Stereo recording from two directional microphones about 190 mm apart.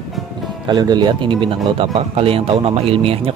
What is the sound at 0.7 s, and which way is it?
Speech, 20° right (ahead or behind).